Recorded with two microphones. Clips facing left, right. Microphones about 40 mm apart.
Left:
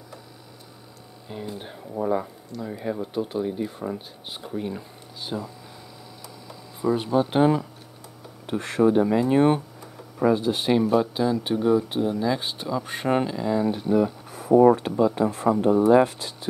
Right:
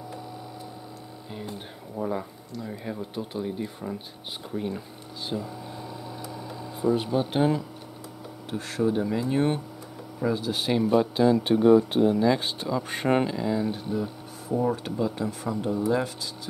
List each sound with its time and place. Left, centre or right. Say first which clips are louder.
1.6 s speech: left 5 dB; centre
6.9 s speech: left 3 dB; centre
7.2 s speech: left 5 dB; centre
8.5 s speech: left 6 dB; left
10.5 s speech: left 3 dB; centre
10.9 s speech: right 1 dB; centre
13.9 s speech: left 8 dB; left
14.9 s speech: left 6 dB; centre
15.1 s speech: left 8 dB; left